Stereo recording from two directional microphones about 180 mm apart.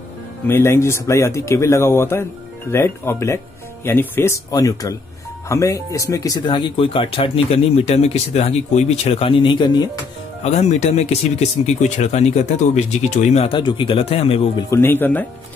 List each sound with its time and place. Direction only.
0.5 s speech: 15° left (ahead or behind)
10.4 s speech: 40° left (ahead or behind)
14.7 s speech: 10° left (ahead or behind)